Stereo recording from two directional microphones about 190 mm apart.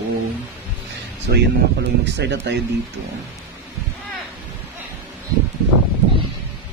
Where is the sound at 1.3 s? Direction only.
60° right (ahead or behind).